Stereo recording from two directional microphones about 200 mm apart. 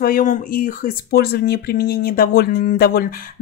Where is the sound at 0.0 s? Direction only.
45° left (ahead or behind).